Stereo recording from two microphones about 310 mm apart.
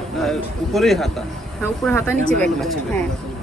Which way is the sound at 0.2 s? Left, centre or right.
Centre.